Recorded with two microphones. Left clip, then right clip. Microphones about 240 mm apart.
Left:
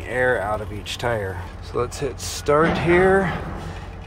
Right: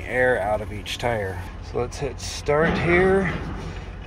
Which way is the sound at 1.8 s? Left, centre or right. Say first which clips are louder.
Left 3 dB; centre.